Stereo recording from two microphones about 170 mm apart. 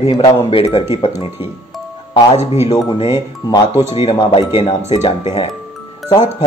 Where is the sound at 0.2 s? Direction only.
35° left (ahead or behind).